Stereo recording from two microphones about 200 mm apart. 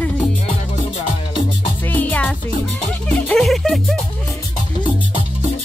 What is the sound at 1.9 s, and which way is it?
Music, 10° left (ahead or behind).